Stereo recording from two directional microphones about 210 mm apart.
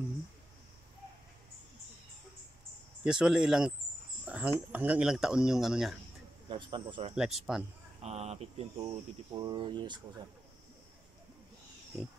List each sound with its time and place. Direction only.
3.0 s speech: 5° right (ahead or behind)
6.5 s speech: 25° right (ahead or behind)
7.2 s speech: centre (ahead or behind)
8.0 s speech: 30° right (ahead or behind)